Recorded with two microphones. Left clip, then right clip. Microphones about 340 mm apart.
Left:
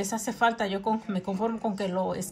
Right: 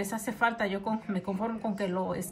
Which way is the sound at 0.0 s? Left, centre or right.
Centre.